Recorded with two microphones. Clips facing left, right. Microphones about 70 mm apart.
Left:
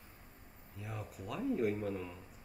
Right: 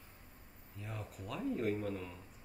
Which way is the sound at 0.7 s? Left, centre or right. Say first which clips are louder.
Left 1 dB; centre.